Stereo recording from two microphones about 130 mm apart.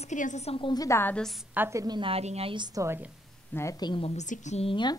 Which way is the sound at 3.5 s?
20° left (ahead or behind).